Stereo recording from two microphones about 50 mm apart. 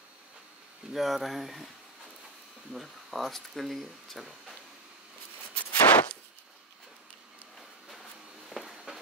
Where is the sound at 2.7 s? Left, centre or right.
Centre.